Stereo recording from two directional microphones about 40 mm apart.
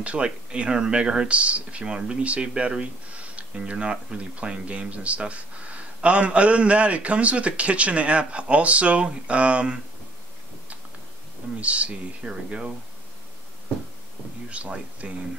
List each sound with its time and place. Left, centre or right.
0.0 s speech: right
3.7 s a man's voice: right
11.6 s a man's voice: right
14.5 s a man's voice: right